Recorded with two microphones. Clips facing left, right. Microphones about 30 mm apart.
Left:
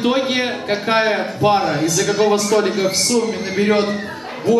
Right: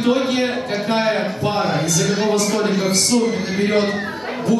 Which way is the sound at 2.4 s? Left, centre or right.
Centre.